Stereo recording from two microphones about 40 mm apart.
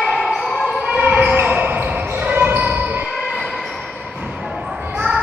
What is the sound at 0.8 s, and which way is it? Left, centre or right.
Basketball bounce, right.